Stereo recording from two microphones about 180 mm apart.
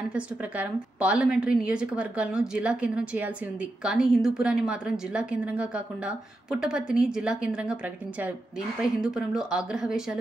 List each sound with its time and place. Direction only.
0.1 s a woman's voice: 5° right (ahead or behind)
8.8 s a woman's voice: 5° right (ahead or behind)